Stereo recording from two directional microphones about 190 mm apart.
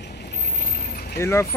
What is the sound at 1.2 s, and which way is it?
Speech, 15° left (ahead or behind).